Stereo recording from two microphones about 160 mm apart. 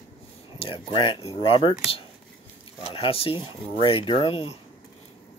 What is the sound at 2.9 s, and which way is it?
Speech, 35° left (ahead or behind).